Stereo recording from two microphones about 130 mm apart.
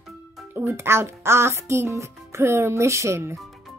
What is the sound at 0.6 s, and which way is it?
A child's voice, 20° right (ahead or behind).